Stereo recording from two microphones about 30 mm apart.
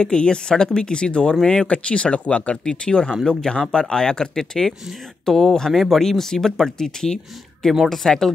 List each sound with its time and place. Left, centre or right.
0.0 s speech: left
1.3 s speech: left
1.7 s speech: left
2.5 s speech: left
4.4 s speech: centre
6.0 s speech: centre
7.8 s speech: centre